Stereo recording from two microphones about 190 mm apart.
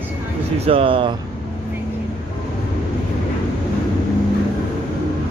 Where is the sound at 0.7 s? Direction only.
30° right (ahead or behind).